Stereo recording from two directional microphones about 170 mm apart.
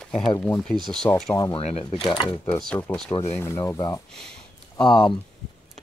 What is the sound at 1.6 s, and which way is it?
Speech, 40° left (ahead or behind).